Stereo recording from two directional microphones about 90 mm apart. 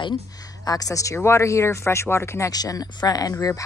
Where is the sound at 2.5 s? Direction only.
45° left (ahead or behind).